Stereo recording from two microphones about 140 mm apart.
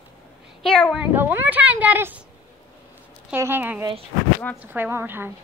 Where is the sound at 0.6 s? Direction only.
5° left (ahead or behind).